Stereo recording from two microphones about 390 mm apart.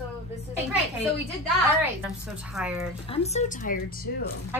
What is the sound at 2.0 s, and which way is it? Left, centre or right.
Speech, centre.